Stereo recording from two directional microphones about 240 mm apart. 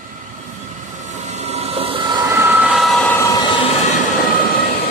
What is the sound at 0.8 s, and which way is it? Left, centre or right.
Train, right.